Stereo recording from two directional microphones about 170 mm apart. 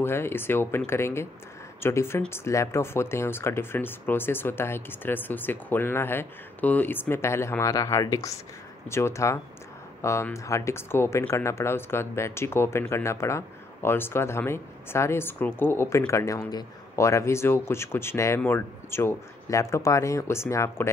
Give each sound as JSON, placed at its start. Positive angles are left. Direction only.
{"t": 0.0, "sound": "speech", "side_deg": 15}